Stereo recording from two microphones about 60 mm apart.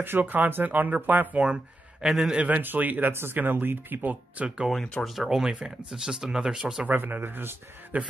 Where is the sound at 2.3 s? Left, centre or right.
Right.